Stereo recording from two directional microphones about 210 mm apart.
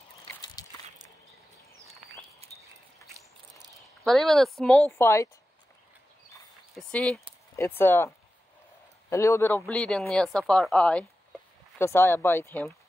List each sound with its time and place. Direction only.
0.2 s walk: 20° left (ahead or behind)
3.2 s a sound: 15° right (ahead or behind)
4.0 s speech: centre (ahead or behind)
6.7 s speech: 5° left (ahead or behind)
9.1 s speech: 15° left (ahead or behind)